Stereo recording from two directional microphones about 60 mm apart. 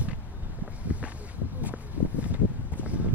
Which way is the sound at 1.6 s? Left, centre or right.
Right.